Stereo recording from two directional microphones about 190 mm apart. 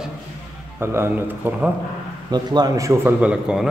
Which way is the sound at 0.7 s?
15° right (ahead or behind).